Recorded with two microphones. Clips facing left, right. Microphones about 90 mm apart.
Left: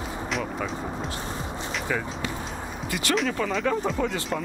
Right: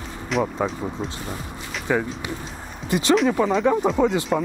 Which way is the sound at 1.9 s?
20° right (ahead or behind).